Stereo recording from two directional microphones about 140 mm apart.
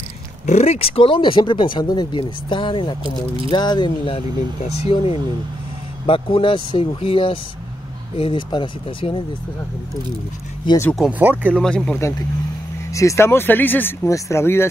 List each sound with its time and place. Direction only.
0.5 s speech: 50° left (ahead or behind)
11.0 s speech: 10° right (ahead or behind)
11.6 s speech: 5° left (ahead or behind)
12.9 s speech: 20° left (ahead or behind)